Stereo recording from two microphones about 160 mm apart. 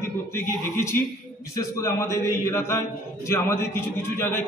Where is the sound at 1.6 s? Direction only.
20° left (ahead or behind).